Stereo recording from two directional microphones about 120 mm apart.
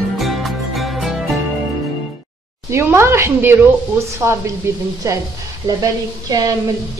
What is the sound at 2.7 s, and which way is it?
A woman's voice, 20° right (ahead or behind).